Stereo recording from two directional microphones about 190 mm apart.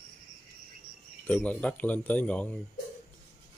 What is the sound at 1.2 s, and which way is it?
Speech, 10° left (ahead or behind).